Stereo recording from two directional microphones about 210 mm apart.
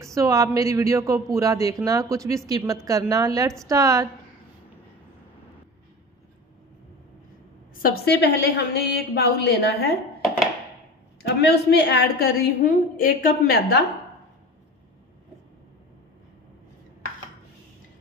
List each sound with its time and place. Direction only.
0.0 s speech: 15° right (ahead or behind)
7.7 s a woman's voice: 45° left (ahead or behind)
11.2 s a woman's voice: 55° left (ahead or behind)